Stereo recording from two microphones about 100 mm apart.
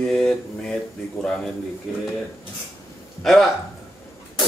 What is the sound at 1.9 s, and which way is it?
Speech, 5° right (ahead or behind).